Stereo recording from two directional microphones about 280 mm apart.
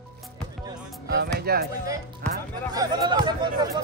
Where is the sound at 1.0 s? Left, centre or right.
Right.